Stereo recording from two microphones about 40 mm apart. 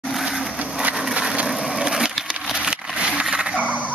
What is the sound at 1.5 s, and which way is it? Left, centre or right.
Skateboard, centre.